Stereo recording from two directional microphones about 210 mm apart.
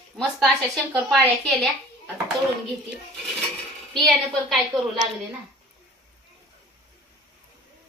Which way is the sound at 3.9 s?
Centre (ahead or behind).